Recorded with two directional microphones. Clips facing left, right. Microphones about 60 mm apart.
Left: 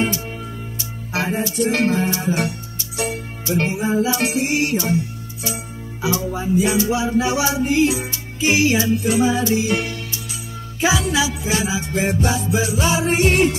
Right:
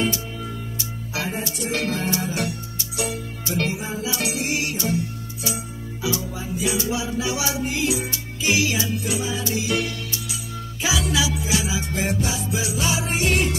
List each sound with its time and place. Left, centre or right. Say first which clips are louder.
1.1 s music: left 7 dB; left
1.9 s music: left 5 dB; left
12.2 s music: left 6 dB; left